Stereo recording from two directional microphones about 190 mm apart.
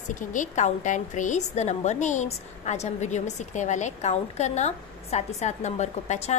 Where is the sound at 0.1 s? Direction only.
40° left (ahead or behind).